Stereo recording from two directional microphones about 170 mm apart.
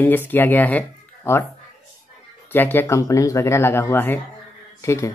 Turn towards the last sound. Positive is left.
turn(degrees=15)  # may be behind; listen again after turning